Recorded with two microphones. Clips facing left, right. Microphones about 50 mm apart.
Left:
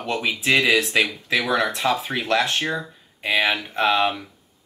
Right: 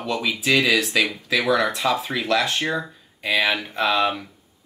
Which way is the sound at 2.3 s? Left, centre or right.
Left.